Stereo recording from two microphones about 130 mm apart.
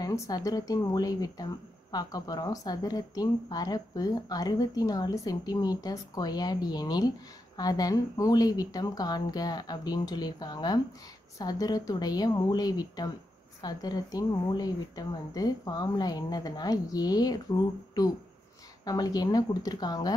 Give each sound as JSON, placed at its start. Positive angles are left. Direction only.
{"t": 0.0, "sound": "speech", "side_deg": 25}